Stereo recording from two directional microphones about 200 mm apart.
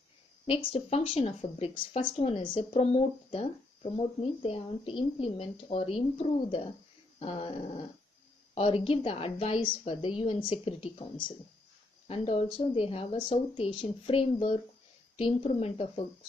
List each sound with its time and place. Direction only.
0.5 s speech: 30° left (ahead or behind)